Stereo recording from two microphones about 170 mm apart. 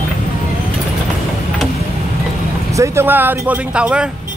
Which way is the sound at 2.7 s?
15° right (ahead or behind).